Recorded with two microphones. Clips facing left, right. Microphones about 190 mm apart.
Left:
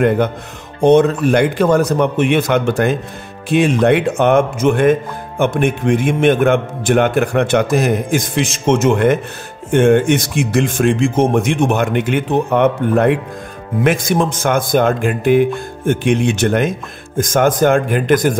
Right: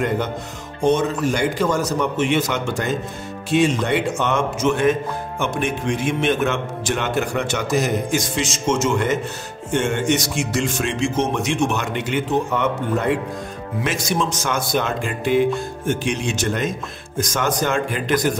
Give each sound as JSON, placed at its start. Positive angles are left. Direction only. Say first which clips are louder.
{"t": 0.7, "sound": "a man's voice", "louder": "left 8 dB", "side_deg": 60}